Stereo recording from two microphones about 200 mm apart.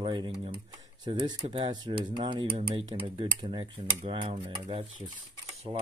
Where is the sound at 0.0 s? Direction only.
25° right (ahead or behind).